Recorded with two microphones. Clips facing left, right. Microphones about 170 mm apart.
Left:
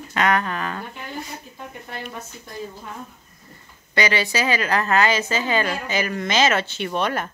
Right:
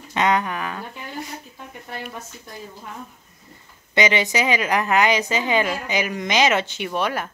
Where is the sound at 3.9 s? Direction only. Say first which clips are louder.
Right 2 dB; 20° right (ahead or behind).